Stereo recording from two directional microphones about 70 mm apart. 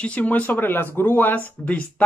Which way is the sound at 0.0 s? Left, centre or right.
Left.